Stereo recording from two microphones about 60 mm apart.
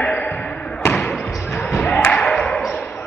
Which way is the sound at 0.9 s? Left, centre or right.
Centre.